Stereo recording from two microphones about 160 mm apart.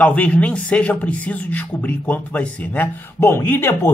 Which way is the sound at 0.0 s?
10° left (ahead or behind).